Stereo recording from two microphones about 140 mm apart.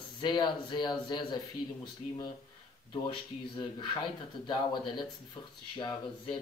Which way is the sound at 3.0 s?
35° left (ahead or behind).